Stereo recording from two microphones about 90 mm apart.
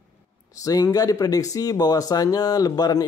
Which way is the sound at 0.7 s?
40° left (ahead or behind).